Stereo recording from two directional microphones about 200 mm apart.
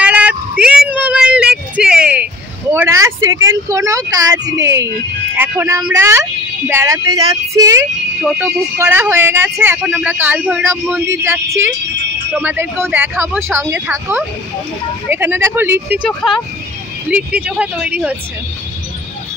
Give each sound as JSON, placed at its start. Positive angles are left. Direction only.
{"t": 0.0, "sound": "a sound", "side_deg": -5}
{"t": 2.7, "sound": "speech", "side_deg": -15}
{"t": 16.1, "sound": "speech", "side_deg": 5}